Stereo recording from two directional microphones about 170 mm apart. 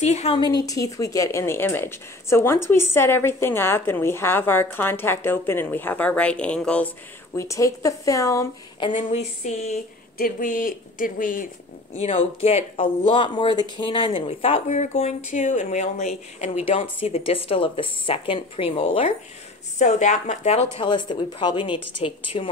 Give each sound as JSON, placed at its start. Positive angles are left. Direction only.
{"t": 0.0, "sound": "speech", "side_deg": 40}
{"t": 7.3, "sound": "a woman's voice", "side_deg": 20}
{"t": 9.1, "sound": "speech", "side_deg": 45}
{"t": 10.1, "sound": "speech", "side_deg": 55}
{"t": 11.9, "sound": "speech", "side_deg": 40}
{"t": 20.7, "sound": "a woman's voice", "side_deg": 30}